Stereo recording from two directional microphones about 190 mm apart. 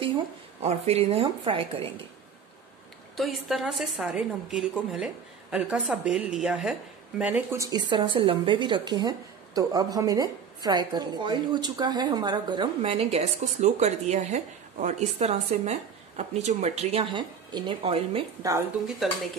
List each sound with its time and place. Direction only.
0.6 s a woman's voice: 35° right (ahead or behind)
3.2 s a woman's voice: centre (ahead or behind); by 18.2 s 30° right (ahead or behind)
18.4 s speech: 15° right (ahead or behind)